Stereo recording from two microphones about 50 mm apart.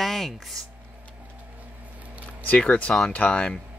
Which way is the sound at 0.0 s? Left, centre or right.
Centre.